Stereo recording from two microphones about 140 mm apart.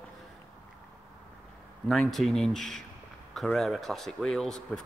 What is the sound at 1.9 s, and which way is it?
Speech, centre (ahead or behind).